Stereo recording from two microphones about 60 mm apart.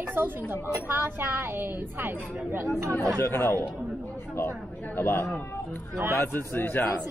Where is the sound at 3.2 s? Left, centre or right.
Left.